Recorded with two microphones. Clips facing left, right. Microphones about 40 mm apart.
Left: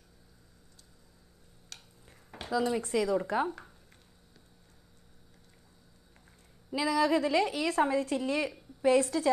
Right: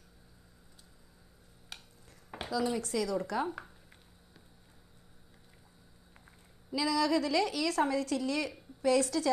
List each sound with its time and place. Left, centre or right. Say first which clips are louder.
1.7 s a sound: right 2 dB; centre
2.8 s a woman's voice: left 4 dB; left
6.7 s a woman's voice: left 2 dB; left